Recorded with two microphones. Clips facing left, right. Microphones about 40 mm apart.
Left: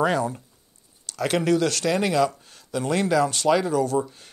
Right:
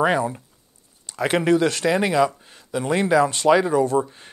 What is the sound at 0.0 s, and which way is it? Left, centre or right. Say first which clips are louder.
Speech: right 2 dB; right.